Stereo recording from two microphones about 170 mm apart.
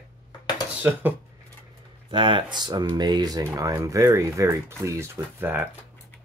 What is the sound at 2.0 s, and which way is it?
Speech, 30° right (ahead or behind).